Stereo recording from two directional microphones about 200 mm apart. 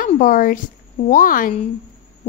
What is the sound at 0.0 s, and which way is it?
A woman's voice, 40° left (ahead or behind).